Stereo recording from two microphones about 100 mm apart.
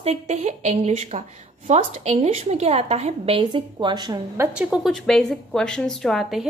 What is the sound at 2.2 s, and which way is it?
A woman's voice, 90° right.